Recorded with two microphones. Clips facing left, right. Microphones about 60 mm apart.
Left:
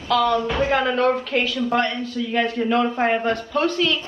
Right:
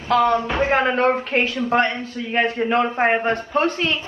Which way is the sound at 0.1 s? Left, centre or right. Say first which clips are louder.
Right 2 dB; right.